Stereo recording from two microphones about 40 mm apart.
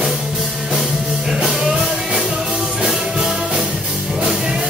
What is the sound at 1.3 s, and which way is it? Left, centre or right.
Music, centre.